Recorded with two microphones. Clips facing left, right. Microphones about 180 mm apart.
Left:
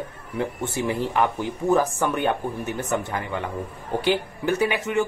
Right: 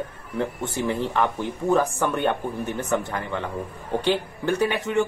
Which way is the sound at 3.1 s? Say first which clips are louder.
Even; 10° left (ahead or behind).